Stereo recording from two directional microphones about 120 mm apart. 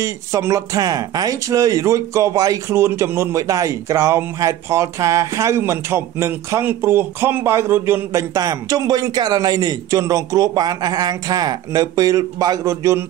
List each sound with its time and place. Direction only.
0.0 s speech: 25° right (ahead or behind)